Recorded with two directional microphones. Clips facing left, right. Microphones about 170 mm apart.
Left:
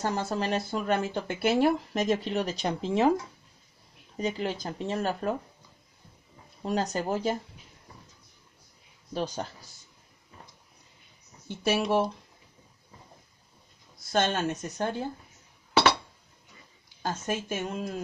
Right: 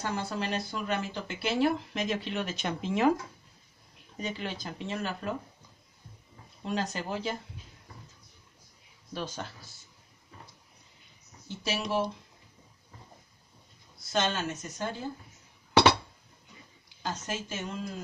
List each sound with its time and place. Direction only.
0.0 s speech: 45° left (ahead or behind)
4.2 s speech: 40° left (ahead or behind)
6.6 s speech: 40° left (ahead or behind)
9.1 s speech: 40° left (ahead or behind)
11.4 s speech: 55° left (ahead or behind)
14.1 s speech: 55° left (ahead or behind)
17.0 s speech: 55° left (ahead or behind)